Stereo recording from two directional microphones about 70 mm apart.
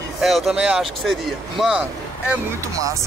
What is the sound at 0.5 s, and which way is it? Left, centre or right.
Speech, centre.